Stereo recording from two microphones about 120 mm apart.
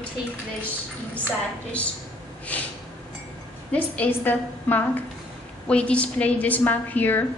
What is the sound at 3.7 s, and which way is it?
A woman's voice, 10° left (ahead or behind).